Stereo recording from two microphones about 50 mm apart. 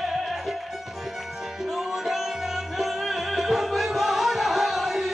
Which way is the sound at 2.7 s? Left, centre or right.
Centre.